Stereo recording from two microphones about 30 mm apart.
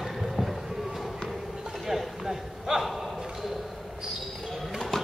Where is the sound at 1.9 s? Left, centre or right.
Centre.